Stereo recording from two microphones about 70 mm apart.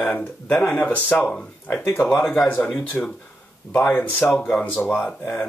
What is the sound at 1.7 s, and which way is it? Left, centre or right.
Speech, left.